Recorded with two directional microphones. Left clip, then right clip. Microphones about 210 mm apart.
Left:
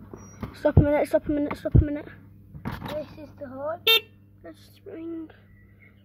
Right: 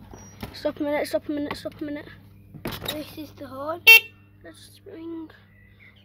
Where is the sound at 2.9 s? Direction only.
50° right (ahead or behind).